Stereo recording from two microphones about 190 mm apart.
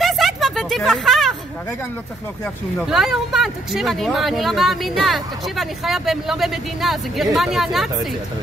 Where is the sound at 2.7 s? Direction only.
Centre (ahead or behind).